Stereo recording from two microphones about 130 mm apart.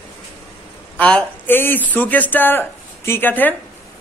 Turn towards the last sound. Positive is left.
turn(degrees=15)  # may be behind; listen again after turning